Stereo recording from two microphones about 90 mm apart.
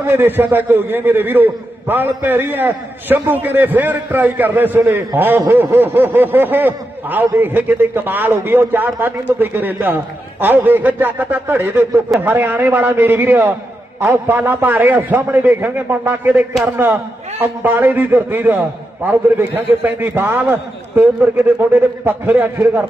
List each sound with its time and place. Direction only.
0.0 s a man's voice: 25° right (ahead or behind)